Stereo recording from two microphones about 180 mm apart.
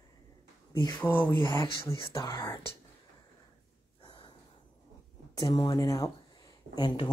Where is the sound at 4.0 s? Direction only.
25° left (ahead or behind).